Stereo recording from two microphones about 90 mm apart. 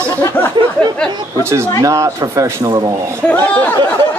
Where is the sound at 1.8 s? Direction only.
35° right (ahead or behind).